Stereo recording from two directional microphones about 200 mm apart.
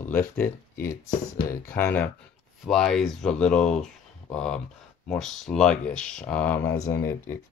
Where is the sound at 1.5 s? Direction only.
10° left (ahead or behind).